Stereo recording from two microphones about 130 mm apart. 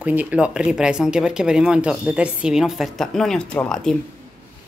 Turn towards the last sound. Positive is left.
turn(degrees=5)  # may be behind; listen again after turning